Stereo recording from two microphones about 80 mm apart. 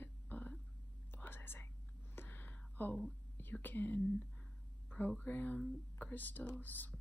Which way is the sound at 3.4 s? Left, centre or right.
Left.